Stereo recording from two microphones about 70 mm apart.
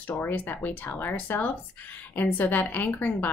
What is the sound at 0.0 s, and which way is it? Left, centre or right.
A woman's voice, left.